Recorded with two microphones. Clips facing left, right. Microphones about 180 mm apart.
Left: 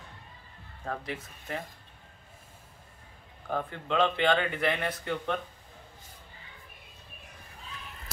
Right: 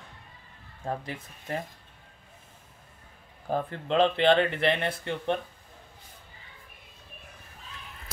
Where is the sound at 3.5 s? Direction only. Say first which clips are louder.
Right 3 dB; 35° right (ahead or behind).